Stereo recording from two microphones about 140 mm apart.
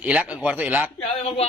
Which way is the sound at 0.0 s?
10° right (ahead or behind).